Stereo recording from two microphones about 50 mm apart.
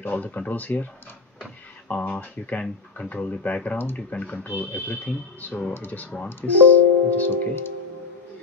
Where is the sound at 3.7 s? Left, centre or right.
Left.